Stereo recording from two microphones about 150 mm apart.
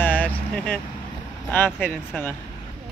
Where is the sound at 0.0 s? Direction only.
10° left (ahead or behind).